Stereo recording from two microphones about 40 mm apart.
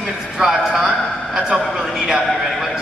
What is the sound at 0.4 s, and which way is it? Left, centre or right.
Speech, centre.